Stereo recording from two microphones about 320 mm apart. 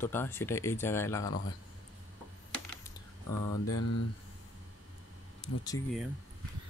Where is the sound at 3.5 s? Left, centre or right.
Left.